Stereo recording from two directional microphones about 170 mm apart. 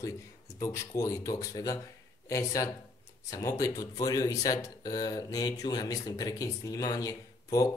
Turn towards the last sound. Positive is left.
turn(degrees=20)  # may be behind; listen again after turning